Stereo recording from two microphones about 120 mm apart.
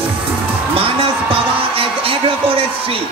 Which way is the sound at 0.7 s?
50° right (ahead or behind).